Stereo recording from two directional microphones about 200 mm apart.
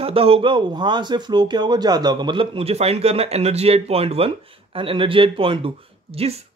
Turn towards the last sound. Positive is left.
turn(degrees=-30)  # may be behind; listen again after turning